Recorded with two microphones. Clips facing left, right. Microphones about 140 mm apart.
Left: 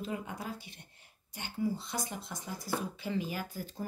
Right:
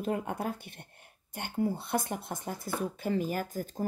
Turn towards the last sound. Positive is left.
turn(degrees=-45)  # may be behind; listen again after turning